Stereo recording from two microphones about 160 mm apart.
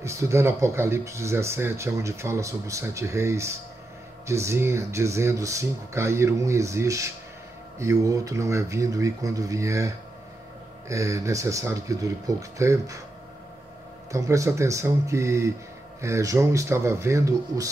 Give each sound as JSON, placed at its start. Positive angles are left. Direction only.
{"t": 0.0, "sound": "speech", "side_deg": -20}
{"t": 14.1, "sound": "speech", "side_deg": -20}